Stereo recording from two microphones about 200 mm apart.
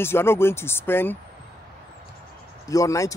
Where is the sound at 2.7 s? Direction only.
15° left (ahead or behind).